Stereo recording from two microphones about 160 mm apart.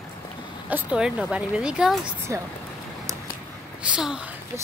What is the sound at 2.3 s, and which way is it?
Speech, 20° right (ahead or behind).